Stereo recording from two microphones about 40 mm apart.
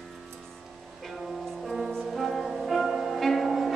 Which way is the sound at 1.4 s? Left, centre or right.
Centre.